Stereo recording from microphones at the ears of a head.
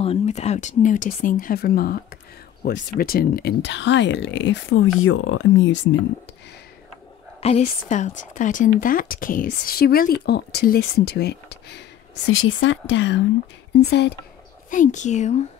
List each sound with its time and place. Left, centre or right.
0.0 s speech: left
7.3 s speech: left